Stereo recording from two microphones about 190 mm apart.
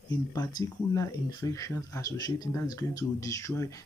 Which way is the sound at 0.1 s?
20° left (ahead or behind).